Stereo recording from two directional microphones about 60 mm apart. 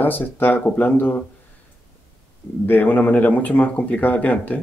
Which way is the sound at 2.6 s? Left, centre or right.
Left.